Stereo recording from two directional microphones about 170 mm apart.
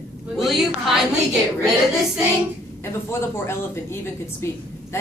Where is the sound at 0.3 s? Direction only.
Centre (ahead or behind).